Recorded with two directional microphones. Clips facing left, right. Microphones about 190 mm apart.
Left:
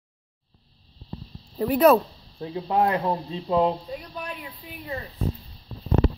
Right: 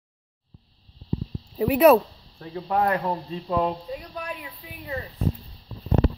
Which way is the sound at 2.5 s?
20° left (ahead or behind).